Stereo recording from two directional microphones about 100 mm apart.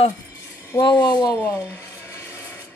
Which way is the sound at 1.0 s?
45° left (ahead or behind).